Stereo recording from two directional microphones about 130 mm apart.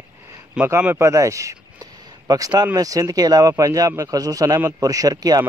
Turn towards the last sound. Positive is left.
turn(degrees=-30)  # may be behind; listen again after turning